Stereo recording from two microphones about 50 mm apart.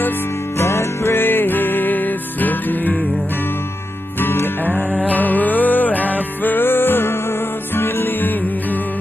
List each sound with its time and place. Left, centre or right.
0.6 s music: left
4.2 s music: left
5.0 s music: left